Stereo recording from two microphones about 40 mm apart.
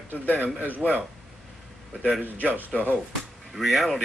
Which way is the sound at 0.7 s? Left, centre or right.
Right.